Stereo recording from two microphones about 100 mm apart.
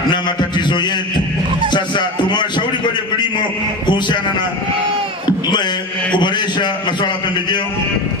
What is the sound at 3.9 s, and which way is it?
Speech, 50° left (ahead or behind).